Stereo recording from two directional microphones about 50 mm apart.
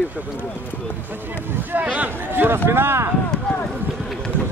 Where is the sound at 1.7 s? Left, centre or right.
Right.